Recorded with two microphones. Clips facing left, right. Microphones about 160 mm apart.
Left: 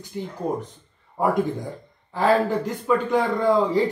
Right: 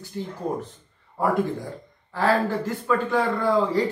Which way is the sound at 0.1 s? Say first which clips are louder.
Left 1 dB; 15° left (ahead or behind).